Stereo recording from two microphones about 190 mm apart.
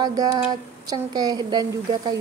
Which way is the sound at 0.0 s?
20° right (ahead or behind).